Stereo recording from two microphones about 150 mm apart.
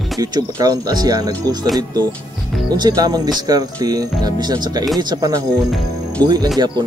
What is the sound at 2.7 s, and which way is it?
Speech, 25° right (ahead or behind).